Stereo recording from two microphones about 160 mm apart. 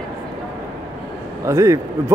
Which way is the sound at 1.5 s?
20° right (ahead or behind).